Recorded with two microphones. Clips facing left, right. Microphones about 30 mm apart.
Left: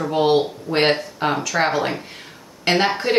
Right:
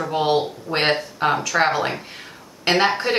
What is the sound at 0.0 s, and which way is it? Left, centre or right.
Speech, centre.